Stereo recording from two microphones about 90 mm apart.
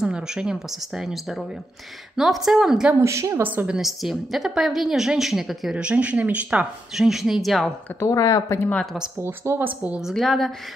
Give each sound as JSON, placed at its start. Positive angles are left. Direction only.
{"t": 0.0, "sound": "a woman's voice", "side_deg": -10}
{"t": 3.0, "sound": "a woman's voice", "side_deg": -30}
{"t": 3.4, "sound": "a woman's voice", "side_deg": -20}
{"t": 3.7, "sound": "a woman's voice", "side_deg": 0}
{"t": 5.8, "sound": "speech", "side_deg": -15}
{"t": 7.0, "sound": "a woman's voice", "side_deg": -5}
{"t": 8.1, "sound": "speech", "side_deg": 40}
{"t": 9.2, "sound": "a woman's voice", "side_deg": -30}
{"t": 10.1, "sound": "a woman's voice", "side_deg": 5}